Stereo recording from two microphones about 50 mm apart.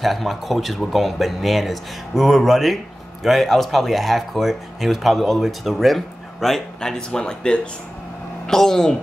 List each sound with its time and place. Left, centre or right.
0.0 s speech: centre